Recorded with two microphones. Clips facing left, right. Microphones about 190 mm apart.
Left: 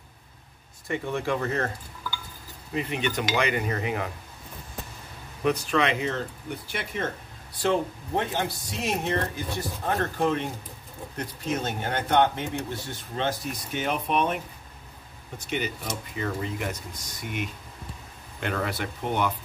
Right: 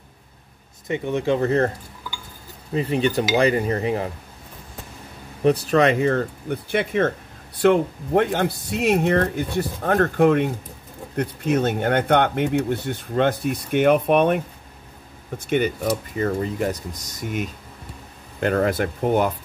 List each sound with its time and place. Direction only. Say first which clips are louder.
0.8 s speech: right 6 dB; 20° right (ahead or behind)
2.7 s cutlery: right 7 dB; 35° right (ahead or behind)
5.4 s speech: right 7 dB; 35° right (ahead or behind)